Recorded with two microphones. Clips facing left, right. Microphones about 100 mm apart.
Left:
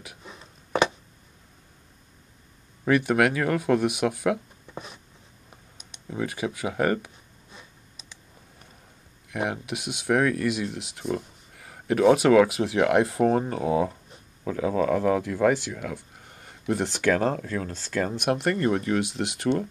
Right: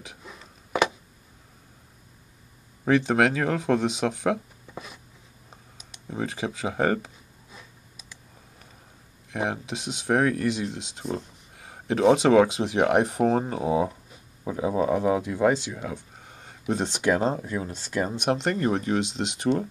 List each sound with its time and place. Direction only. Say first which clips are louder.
0.2 s a sound: even; centre (ahead or behind)
2.8 s speech: even; 25° right (ahead or behind)
4.7 s writing: left 1 dB; 5° right (ahead or behind)
6.0 s speech: left 1 dB; 30° right (ahead or behind)
9.3 s speech: even; 25° right (ahead or behind)
13.2 s speech: left 1 dB; 35° right (ahead or behind)
13.5 s speech: even; 25° right (ahead or behind)